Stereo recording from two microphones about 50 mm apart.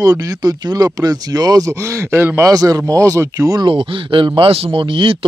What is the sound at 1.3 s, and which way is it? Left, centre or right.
Speech, right.